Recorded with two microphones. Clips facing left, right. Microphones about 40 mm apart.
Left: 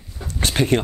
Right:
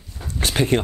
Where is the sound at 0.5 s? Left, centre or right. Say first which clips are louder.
Left 1 dB; centre.